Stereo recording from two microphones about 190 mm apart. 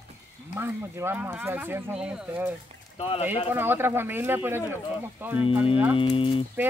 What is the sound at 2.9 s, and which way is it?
Speech, 30° left (ahead or behind).